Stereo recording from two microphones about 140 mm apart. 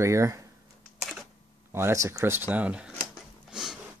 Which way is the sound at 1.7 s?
20° right (ahead or behind).